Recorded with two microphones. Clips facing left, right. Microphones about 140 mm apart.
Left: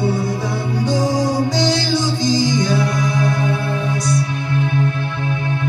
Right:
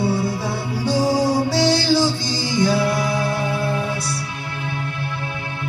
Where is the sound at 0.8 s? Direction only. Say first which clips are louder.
Right 1 dB; 30° right (ahead or behind).